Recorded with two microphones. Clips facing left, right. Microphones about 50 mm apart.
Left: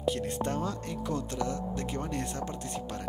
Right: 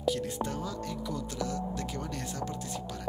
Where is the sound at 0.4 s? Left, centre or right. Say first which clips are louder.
Left 2 dB; left.